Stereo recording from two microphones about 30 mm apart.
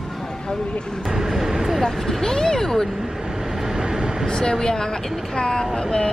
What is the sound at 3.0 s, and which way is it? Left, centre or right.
Vehicle, right.